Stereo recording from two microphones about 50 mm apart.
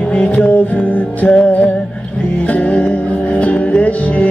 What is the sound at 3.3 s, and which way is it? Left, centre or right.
Music, left.